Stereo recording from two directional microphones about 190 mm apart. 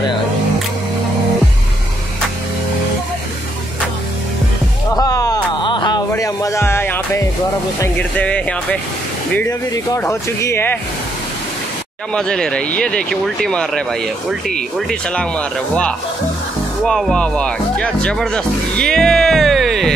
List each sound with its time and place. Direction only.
4.9 s music: 20° left (ahead or behind)
7.8 s speech: 10° left (ahead or behind)
12.1 s speech: 5° left (ahead or behind)